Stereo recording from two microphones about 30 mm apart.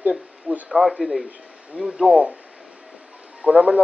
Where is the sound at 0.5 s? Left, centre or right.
Right.